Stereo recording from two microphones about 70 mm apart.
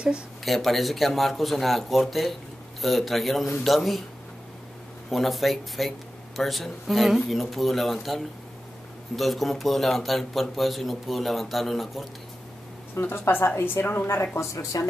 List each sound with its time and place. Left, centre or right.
0.5 s speech: centre
5.1 s speech: centre
12.9 s a woman's voice: left
14.5 s speech: left